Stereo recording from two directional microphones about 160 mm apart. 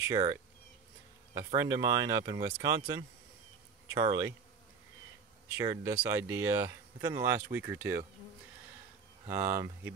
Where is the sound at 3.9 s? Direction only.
20° right (ahead or behind).